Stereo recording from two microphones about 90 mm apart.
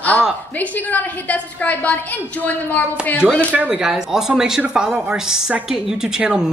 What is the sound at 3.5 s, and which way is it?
Speech, 10° right (ahead or behind).